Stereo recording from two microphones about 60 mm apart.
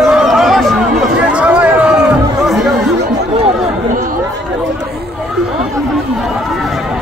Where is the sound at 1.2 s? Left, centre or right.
Centre.